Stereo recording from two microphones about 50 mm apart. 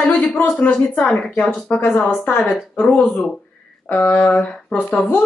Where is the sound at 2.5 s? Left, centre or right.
Centre.